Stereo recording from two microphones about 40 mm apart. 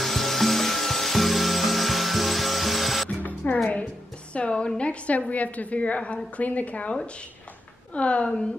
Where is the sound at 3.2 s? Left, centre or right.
Left.